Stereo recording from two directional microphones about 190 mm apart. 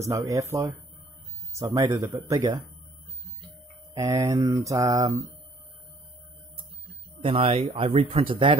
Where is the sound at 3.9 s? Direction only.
20° right (ahead or behind).